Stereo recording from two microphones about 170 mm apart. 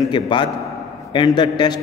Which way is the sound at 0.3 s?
30° left (ahead or behind).